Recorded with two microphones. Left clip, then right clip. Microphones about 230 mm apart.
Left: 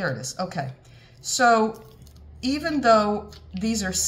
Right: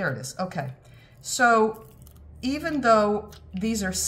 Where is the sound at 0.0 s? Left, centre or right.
Centre.